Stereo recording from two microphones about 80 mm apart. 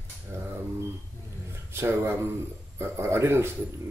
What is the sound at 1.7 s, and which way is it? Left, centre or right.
A man's voice, right.